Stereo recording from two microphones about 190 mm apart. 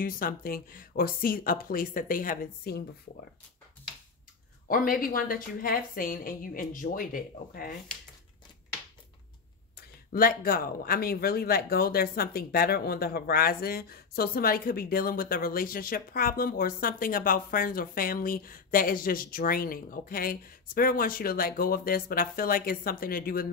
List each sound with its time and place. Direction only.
0.0 s speech: 50° left (ahead or behind)
4.6 s speech: 45° left (ahead or behind)
9.8 s speech: 50° left (ahead or behind)